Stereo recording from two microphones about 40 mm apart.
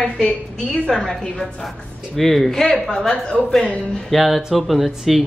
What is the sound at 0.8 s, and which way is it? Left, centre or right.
Speech, centre.